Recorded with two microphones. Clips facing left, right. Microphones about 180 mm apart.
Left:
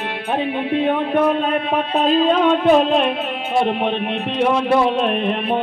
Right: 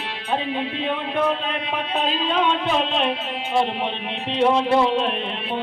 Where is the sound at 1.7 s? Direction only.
45° left (ahead or behind).